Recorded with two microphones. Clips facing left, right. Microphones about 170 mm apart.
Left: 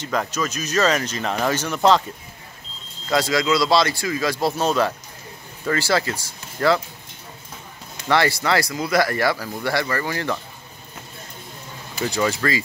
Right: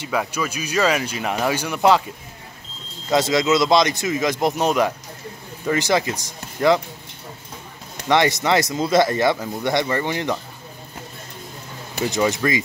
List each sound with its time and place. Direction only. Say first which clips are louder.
0.0 s speech: even; 10° right (ahead or behind)
3.1 s speech: right 2 dB; 20° right (ahead or behind)
8.1 s speech: right 2 dB; 20° right (ahead or behind)
12.0 s speech: right 2 dB; 15° right (ahead or behind)